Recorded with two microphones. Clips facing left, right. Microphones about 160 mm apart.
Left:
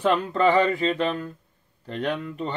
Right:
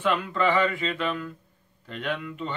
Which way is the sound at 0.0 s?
40° left (ahead or behind).